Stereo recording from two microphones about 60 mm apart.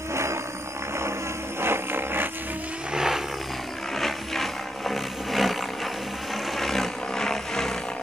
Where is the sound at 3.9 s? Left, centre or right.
Centre.